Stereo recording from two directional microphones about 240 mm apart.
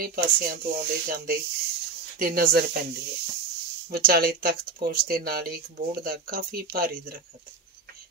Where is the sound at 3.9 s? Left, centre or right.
Right.